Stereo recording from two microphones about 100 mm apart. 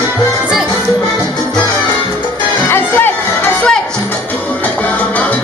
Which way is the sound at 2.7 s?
20° left (ahead or behind).